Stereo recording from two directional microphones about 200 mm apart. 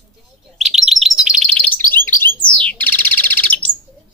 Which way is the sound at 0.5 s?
Centre (ahead or behind).